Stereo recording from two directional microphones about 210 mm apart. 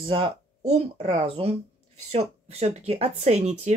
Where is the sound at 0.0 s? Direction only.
25° right (ahead or behind).